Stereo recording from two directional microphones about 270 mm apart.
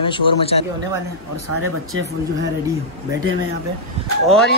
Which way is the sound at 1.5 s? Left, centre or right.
Right.